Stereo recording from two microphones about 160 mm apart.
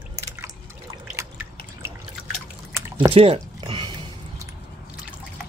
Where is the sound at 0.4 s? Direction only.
15° right (ahead or behind).